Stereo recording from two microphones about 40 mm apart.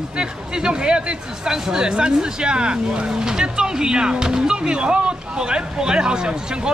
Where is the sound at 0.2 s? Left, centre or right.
Right.